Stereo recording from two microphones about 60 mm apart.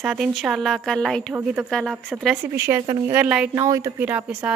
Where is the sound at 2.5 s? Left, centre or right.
Right.